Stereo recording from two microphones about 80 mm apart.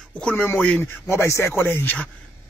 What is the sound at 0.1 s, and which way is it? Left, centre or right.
Speech, centre.